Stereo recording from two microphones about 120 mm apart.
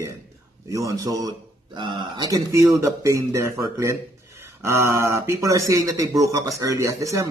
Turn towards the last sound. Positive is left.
turn(degrees=-25)  # may be behind; listen again after turning